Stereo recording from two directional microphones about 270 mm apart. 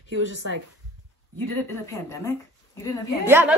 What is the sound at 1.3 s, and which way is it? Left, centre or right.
Speech, centre.